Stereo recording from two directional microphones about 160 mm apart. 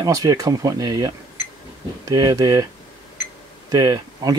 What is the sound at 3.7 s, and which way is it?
Speech, 25° right (ahead or behind).